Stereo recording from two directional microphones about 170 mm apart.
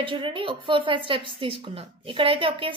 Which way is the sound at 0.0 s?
30° right (ahead or behind).